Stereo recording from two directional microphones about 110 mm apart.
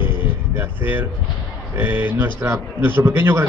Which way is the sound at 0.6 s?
20° right (ahead or behind).